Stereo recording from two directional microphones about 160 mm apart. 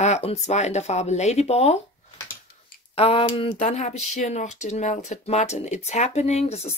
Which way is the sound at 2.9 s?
35° left (ahead or behind).